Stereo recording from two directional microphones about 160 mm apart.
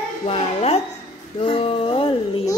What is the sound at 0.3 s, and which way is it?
Speech, 40° left (ahead or behind).